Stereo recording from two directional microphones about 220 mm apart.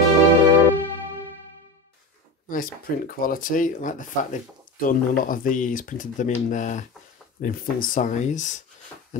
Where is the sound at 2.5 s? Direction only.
40° left (ahead or behind).